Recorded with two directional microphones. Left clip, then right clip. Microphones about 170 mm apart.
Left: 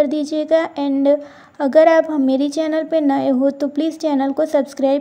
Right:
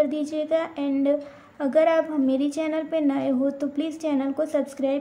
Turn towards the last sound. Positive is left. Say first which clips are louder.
# left 8 dB
turn(degrees=30)  # may be behind; listen again after turning